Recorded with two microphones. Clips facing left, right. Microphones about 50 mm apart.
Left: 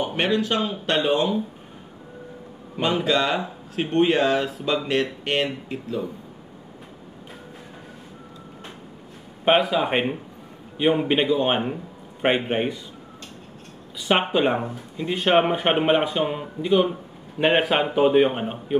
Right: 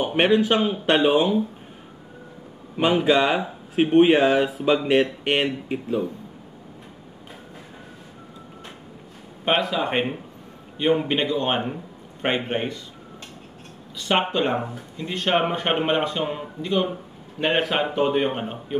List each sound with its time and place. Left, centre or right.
0.0 s speech: centre
2.8 s speech: centre
9.4 s speech: centre
13.9 s speech: centre